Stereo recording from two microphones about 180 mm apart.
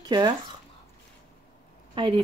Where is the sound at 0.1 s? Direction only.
20° right (ahead or behind).